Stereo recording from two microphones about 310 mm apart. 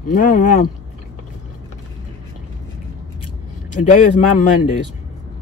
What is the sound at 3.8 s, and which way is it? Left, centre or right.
Speech, left.